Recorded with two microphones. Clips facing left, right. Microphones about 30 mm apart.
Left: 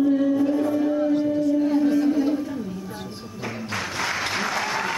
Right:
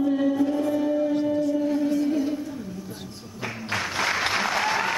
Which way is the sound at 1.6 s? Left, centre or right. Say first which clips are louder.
Left 4 dB; centre.